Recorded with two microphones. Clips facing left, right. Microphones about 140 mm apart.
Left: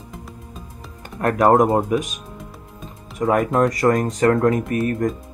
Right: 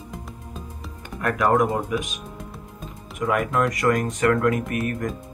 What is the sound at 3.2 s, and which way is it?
Speech, 35° left (ahead or behind).